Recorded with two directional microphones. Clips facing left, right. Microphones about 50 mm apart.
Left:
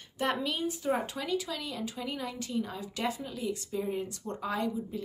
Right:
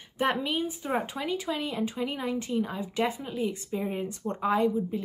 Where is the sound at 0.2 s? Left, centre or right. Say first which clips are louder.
Right 3 dB; right.